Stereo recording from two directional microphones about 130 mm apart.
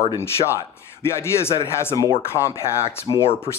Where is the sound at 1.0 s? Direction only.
20° left (ahead or behind).